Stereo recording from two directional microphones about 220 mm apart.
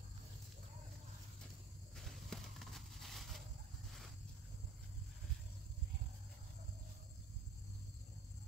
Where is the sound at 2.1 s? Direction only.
Centre (ahead or behind).